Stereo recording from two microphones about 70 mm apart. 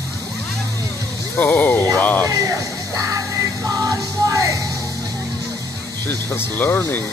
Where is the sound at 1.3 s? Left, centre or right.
Left.